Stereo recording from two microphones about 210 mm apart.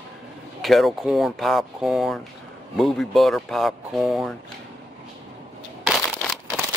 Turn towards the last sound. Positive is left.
turn(degrees=0)  # may be behind; listen again after turning